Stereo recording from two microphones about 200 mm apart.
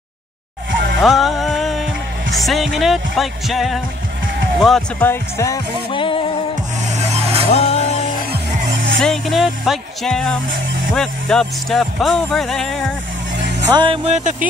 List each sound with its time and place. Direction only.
0.7 s music: 65° right (ahead or behind)
1.0 s music: centre (ahead or behind)
2.3 s speech: centre (ahead or behind); by 6.3 s 25° left (ahead or behind)
6.9 s vehicle: 35° right (ahead or behind)
7.5 s music: 30° left (ahead or behind)
9.0 s speech: centre (ahead or behind)
13.7 s speech: 25° right (ahead or behind)